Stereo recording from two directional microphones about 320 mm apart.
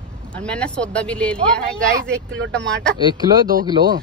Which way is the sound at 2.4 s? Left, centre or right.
Right.